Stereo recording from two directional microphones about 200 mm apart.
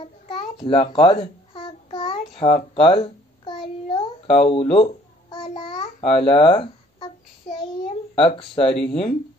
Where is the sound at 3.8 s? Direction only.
30° left (ahead or behind).